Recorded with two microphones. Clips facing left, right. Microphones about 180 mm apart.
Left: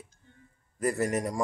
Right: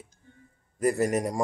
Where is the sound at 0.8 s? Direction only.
15° right (ahead or behind).